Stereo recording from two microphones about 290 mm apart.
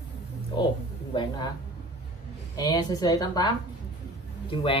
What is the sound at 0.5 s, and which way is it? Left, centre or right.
Speech, centre.